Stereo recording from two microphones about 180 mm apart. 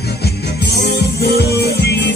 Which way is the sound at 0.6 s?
70° left (ahead or behind).